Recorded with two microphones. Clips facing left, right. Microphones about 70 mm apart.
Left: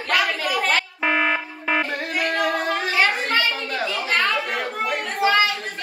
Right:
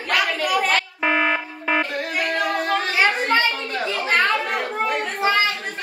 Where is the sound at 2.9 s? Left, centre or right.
Right.